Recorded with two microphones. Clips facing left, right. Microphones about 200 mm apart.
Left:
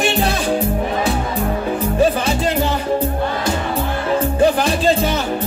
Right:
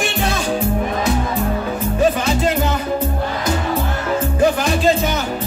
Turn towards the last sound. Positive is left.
turn(degrees=35)  # may be behind; listen again after turning